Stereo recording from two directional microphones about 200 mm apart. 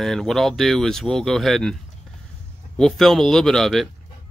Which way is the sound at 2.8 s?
Centre (ahead or behind).